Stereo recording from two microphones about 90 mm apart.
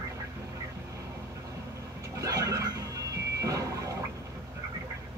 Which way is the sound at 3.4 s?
40° right (ahead or behind).